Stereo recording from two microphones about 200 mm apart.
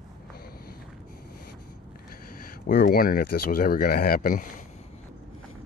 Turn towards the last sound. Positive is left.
turn(degrees=45)  # may be behind; listen again after turning